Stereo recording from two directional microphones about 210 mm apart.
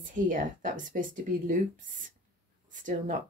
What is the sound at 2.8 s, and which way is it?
Speech, 35° right (ahead or behind).